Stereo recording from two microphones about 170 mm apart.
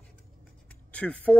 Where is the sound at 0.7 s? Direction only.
5° left (ahead or behind).